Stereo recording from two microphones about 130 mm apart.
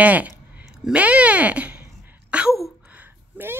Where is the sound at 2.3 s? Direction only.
10° right (ahead or behind).